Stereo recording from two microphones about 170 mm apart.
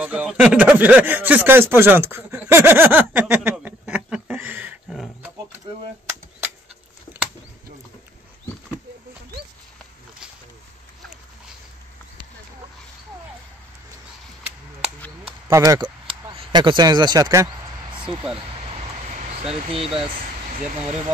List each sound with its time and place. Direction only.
0.0 s speech: 5° right (ahead or behind)
4.9 s wild animals: centre (ahead or behind)
15.5 s speech: 20° right (ahead or behind)
16.1 s a sound: 30° right (ahead or behind)
18.6 s vehicle: 35° right (ahead or behind)